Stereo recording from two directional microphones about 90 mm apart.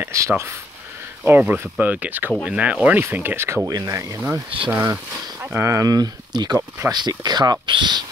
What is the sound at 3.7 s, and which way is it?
Speech, 45° right (ahead or behind).